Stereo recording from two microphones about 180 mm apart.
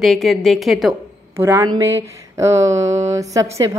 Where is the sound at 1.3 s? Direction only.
15° right (ahead or behind).